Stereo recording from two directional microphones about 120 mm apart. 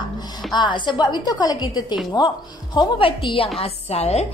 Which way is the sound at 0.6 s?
40° left (ahead or behind).